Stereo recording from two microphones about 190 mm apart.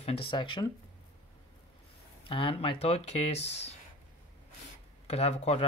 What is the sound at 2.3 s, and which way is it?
Speech, 25° left (ahead or behind).